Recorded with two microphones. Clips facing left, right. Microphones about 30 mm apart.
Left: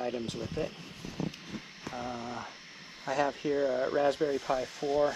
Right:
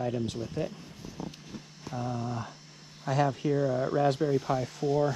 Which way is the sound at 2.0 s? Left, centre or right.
Left.